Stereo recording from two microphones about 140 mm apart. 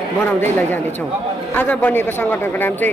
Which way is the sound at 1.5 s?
15° left (ahead or behind).